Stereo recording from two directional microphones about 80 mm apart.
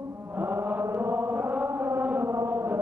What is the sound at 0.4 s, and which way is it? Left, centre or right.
Chant, right.